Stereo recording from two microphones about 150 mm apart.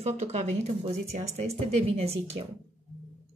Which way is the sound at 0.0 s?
50° right (ahead or behind).